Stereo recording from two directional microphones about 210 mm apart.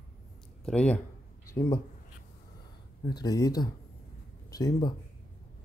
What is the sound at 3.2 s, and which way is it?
Speech, 15° left (ahead or behind).